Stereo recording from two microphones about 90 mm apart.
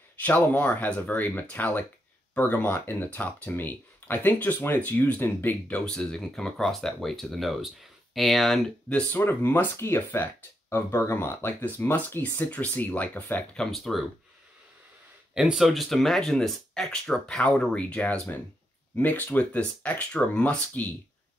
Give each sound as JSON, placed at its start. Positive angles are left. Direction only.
{"t": 0.2, "sound": "speech", "side_deg": 20}
{"t": 5.9, "sound": "speech", "side_deg": 10}
{"t": 8.8, "sound": "speech", "side_deg": 20}
{"t": 13.7, "sound": "speech", "side_deg": 0}
{"t": 15.3, "sound": "speech", "side_deg": -5}